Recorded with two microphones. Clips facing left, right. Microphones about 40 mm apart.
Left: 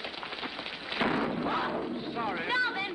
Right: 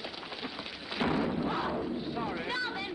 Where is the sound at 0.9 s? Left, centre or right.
Left.